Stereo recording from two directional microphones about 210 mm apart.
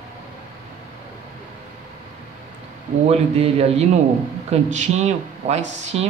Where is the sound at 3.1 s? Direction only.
30° right (ahead or behind).